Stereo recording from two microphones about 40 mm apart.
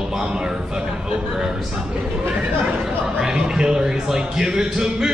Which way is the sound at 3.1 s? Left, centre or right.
Centre.